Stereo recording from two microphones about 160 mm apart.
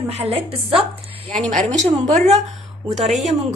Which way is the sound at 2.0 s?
45° right (ahead or behind).